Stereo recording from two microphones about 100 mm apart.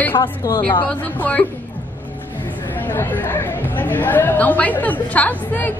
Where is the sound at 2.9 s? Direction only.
20° left (ahead or behind).